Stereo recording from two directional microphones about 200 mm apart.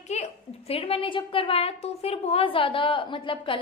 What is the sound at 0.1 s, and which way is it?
A woman's voice, 30° left (ahead or behind).